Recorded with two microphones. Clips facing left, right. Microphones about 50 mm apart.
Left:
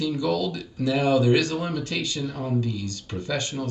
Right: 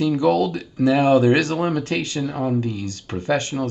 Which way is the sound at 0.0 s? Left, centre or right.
Right.